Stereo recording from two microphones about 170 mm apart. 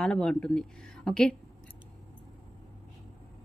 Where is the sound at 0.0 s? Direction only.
5° left (ahead or behind).